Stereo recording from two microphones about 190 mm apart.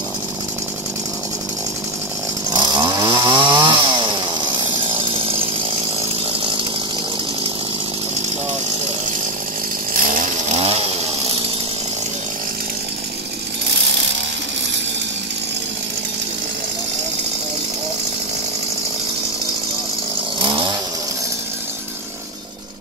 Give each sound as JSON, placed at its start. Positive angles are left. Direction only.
{"t": 2.5, "sound": "chainsaw", "side_deg": -25}
{"t": 9.9, "sound": "chainsaw", "side_deg": -45}
{"t": 20.3, "sound": "chainsaw", "side_deg": -25}